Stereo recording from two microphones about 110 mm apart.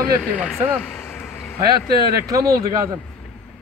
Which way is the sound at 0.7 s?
20° left (ahead or behind).